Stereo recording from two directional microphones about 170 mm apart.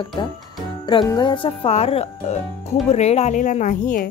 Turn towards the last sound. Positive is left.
turn(degrees=50)  # may be behind; listen again after turning